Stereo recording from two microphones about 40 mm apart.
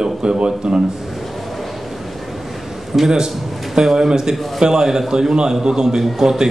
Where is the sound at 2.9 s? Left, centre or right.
Centre.